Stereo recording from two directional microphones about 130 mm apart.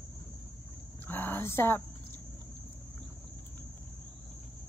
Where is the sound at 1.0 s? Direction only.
15° left (ahead or behind).